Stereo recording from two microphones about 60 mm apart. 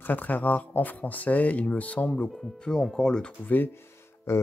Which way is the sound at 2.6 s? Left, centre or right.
Centre.